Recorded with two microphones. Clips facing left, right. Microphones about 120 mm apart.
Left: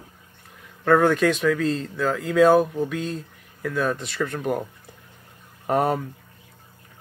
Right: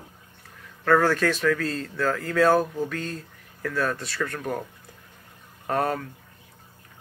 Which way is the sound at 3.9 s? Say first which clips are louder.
Left 3 dB; 20° left (ahead or behind).